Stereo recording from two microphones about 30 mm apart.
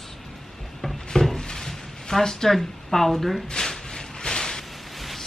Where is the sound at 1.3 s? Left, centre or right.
Left.